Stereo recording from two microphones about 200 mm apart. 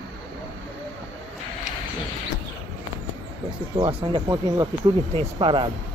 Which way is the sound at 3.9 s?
20° right (ahead or behind).